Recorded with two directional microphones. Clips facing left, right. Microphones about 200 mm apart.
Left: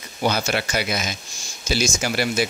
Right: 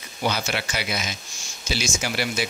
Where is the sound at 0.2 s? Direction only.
45° left (ahead or behind).